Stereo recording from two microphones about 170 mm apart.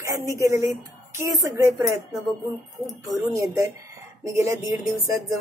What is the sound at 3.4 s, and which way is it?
A woman's voice, 20° right (ahead or behind).